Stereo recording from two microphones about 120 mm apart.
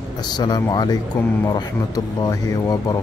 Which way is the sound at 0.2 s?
35° left (ahead or behind).